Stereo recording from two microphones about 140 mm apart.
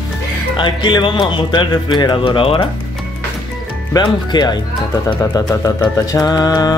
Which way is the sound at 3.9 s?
30° left (ahead or behind).